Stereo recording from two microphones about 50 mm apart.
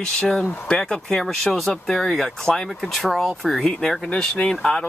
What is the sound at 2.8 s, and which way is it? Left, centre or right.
Speech, centre.